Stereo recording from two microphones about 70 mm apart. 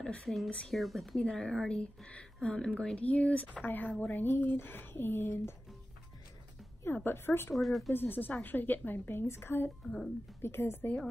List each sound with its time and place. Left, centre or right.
0.0 s speech: centre
0.7 s speech: centre
3.0 s a woman's voice: left
7.1 s a woman's voice: left
7.5 s speech: centre
7.9 s a woman's voice: left